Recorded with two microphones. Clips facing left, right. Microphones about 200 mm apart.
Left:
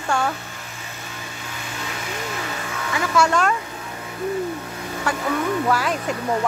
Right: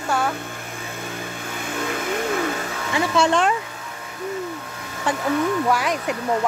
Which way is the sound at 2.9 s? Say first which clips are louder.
Right 1 dB; 25° right (ahead or behind).